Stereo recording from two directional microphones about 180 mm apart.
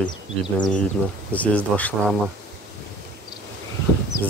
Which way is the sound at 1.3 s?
10° left (ahead or behind).